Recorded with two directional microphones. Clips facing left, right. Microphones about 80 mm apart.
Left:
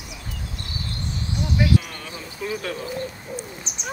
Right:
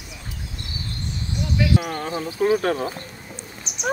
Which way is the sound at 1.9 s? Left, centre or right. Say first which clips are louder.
Right 9 dB; right.